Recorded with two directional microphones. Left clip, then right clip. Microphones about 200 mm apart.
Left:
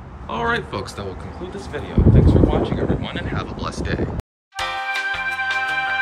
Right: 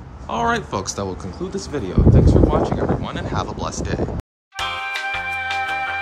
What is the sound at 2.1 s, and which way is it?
Speech, 40° right (ahead or behind).